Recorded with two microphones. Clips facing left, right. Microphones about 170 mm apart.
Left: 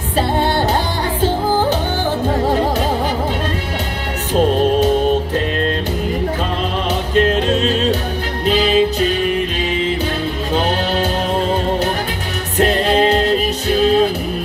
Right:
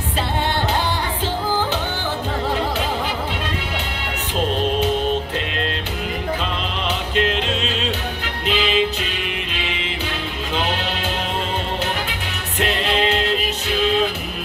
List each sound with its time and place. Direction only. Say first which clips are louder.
2.2 s music: left 6 dB; 45° left (ahead or behind)
7.2 s music: left 7 dB; 45° left (ahead or behind)
10.5 s music: left 6 dB; 40° left (ahead or behind)
12.5 s music: left 7 dB; 40° left (ahead or behind)